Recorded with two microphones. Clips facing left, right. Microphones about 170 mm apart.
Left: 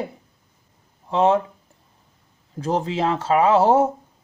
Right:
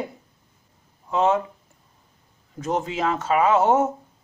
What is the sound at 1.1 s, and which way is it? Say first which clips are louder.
Speech: left 3 dB; 30° left (ahead or behind).